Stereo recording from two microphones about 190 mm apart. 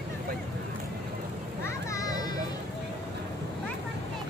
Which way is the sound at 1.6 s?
15° left (ahead or behind).